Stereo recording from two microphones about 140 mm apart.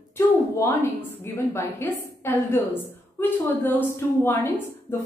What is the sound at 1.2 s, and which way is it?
A woman's voice, 20° left (ahead or behind).